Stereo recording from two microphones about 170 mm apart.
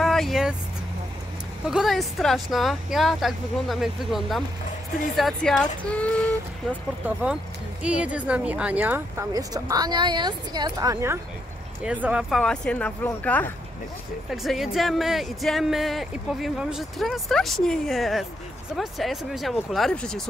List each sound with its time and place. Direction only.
0.0 s vehicle: centre (ahead or behind)
1.7 s speech: centre (ahead or behind)
7.0 s speech: 10° right (ahead or behind)
11.8 s speech: 10° right (ahead or behind); by 13.5 s 10° left (ahead or behind)
14.3 s speech: centre (ahead or behind)